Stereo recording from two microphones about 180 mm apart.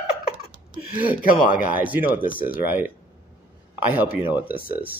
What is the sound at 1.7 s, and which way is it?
Speech, 10° right (ahead or behind).